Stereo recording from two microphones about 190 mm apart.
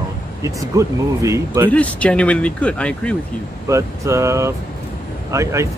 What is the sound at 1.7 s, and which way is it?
Speech, 5° left (ahead or behind).